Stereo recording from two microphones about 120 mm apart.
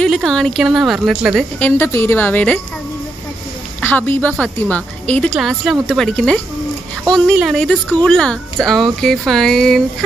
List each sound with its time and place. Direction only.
0.0 s speech: 5° left (ahead or behind)
1.6 s a woman's voice: 20° left (ahead or behind)
3.8 s a woman's voice: 15° left (ahead or behind)
5.3 s a woman's voice: centre (ahead or behind)